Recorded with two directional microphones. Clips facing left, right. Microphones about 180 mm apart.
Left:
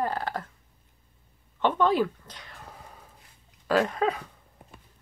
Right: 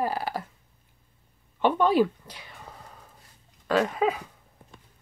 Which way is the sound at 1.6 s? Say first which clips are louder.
Right 2 dB; 15° right (ahead or behind).